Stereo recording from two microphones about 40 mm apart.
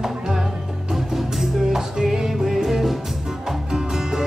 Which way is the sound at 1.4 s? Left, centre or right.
Centre.